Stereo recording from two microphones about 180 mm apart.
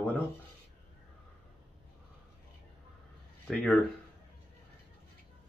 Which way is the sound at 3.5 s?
5° left (ahead or behind).